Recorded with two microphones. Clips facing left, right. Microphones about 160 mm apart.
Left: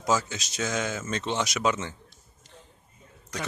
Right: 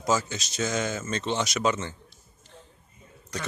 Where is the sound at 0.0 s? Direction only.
Centre (ahead or behind).